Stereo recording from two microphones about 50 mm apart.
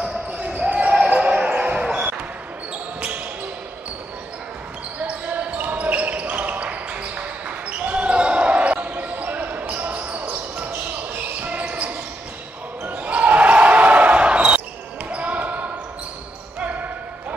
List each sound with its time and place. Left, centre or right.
0.4 s basketball bounce: right
5.0 s basketball bounce: right